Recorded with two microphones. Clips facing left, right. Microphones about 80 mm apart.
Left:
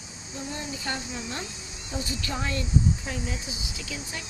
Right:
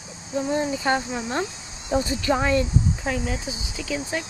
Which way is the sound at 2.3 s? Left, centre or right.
Right.